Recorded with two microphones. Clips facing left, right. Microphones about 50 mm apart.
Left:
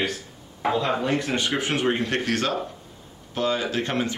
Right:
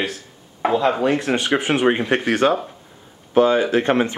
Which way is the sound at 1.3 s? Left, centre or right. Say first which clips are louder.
Right 5 dB; right.